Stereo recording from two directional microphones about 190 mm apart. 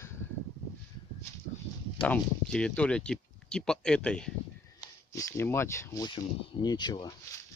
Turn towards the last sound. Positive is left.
turn(degrees=20)  # may be behind; listen again after turning